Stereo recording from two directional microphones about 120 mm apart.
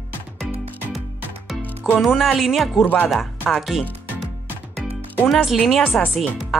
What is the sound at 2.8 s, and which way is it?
Speech, 15° left (ahead or behind).